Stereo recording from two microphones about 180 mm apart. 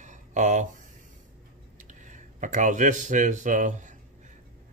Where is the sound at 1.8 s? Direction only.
45° right (ahead or behind).